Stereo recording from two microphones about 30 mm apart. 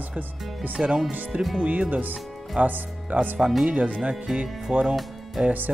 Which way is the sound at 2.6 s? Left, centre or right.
Right.